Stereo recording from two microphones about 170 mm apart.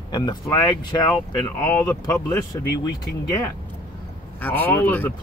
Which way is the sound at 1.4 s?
15° left (ahead or behind).